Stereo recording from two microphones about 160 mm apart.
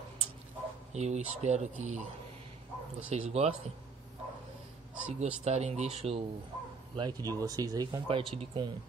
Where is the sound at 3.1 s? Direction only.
40° right (ahead or behind).